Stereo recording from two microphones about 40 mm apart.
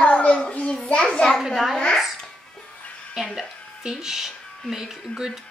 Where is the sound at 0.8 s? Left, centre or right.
Left.